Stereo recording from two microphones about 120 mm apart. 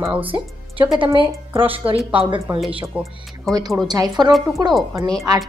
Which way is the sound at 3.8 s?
35° right (ahead or behind).